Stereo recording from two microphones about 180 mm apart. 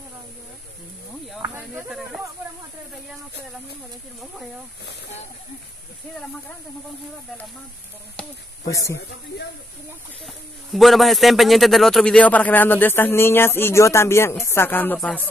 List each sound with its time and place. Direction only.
1.4 s snake: 10° right (ahead or behind)
8.6 s speech: 15° left (ahead or behind)
10.2 s speech: centre (ahead or behind)